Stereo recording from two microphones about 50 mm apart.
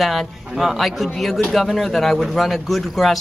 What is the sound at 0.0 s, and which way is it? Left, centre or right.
A man's voice, centre.